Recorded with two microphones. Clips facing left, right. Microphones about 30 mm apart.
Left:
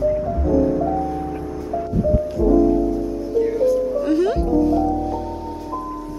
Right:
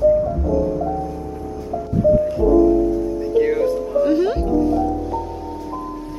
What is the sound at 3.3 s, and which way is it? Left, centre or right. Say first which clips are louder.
Music: right 3 dB; right.